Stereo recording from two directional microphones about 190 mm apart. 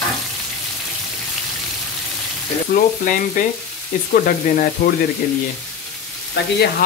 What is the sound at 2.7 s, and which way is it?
Frying, 45° left (ahead or behind).